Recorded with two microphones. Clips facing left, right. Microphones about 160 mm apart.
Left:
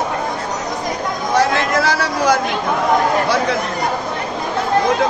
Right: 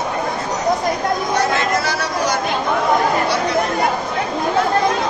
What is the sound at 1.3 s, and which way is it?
Chatter, 90° left.